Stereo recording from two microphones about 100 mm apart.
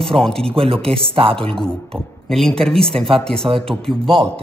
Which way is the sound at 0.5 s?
70° right (ahead or behind).